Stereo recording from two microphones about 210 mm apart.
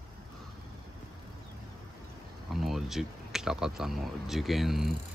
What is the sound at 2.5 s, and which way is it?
Speech, centre (ahead or behind).